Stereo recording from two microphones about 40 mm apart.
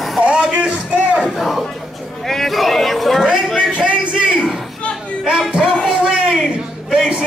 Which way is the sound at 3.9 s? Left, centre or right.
Right.